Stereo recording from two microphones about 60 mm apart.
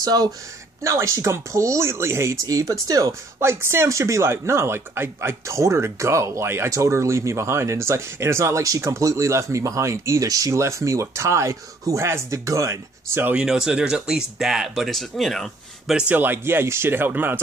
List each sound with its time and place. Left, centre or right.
0.0 s speech: right
0.8 s speech: right
2.4 s speech: right
3.3 s speech: right
5.5 s speech: right
6.4 s speech: right
6.7 s speech: right
10.5 s speech: right
13.5 s speech: centre
14.9 s speech: centre
16.1 s speech: right